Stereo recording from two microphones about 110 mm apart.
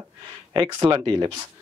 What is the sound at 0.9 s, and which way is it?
Speech, 40° right (ahead or behind).